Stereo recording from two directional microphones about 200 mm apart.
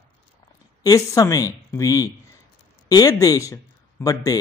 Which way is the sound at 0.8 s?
15° left (ahead or behind).